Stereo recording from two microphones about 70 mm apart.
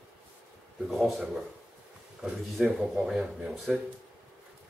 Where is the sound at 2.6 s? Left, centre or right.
Centre.